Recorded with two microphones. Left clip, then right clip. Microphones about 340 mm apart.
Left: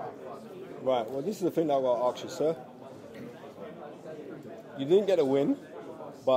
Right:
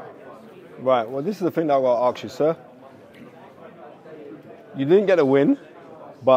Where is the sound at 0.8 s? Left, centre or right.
Right.